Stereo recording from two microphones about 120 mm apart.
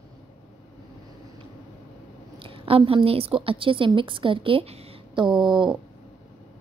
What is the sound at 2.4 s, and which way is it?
A woman's voice, 50° right (ahead or behind).